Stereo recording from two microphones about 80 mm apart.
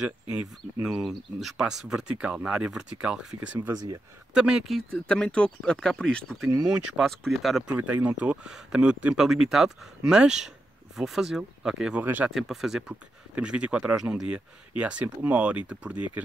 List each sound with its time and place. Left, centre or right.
0.0 s speech: centre
0.8 s speech: centre
3.7 s speech: right
4.3 s speech: centre
4.7 s speech: centre
6.6 s speech: centre
7.8 s speech: centre
12.0 s speech: right
12.4 s speech: centre